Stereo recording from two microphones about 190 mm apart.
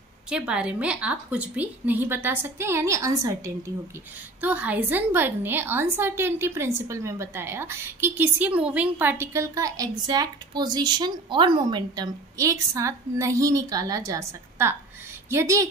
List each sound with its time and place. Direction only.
0.3 s a woman's voice: 5° right (ahead or behind)